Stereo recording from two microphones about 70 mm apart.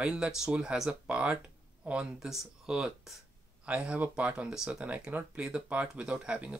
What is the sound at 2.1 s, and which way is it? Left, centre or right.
Speech, centre.